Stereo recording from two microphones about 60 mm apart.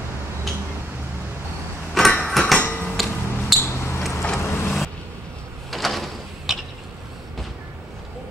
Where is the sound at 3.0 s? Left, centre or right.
Centre.